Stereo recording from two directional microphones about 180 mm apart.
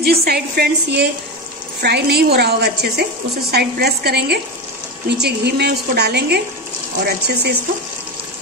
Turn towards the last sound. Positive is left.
turn(degrees=-65)  # may be behind; listen again after turning